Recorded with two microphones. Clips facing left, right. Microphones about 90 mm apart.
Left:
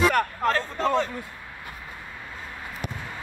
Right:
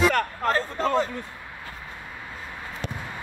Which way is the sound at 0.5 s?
10° right (ahead or behind).